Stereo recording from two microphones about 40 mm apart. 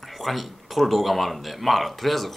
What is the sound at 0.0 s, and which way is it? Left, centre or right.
Speech, centre.